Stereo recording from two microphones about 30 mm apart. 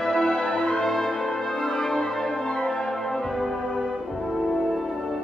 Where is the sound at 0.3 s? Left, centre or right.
Left.